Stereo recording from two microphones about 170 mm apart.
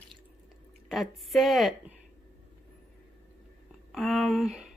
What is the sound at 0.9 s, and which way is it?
A woman's voice, centre (ahead or behind).